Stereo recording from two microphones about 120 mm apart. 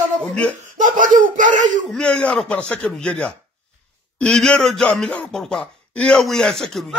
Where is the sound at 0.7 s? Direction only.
90° right.